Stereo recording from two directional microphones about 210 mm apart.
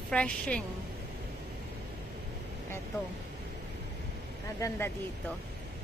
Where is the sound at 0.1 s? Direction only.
5° left (ahead or behind).